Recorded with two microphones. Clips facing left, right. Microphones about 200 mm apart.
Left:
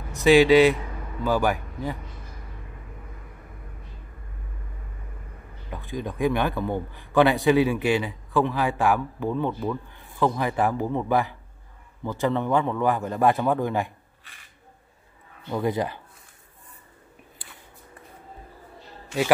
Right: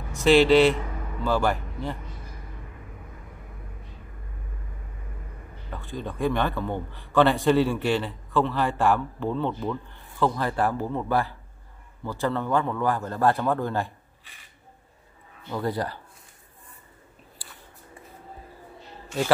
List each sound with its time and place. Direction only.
0.1 s a man's voice: 10° left (ahead or behind)
5.7 s a man's voice: 15° left (ahead or behind)
15.5 s a man's voice: 20° left (ahead or behind)
18.8 s a sound: centre (ahead or behind)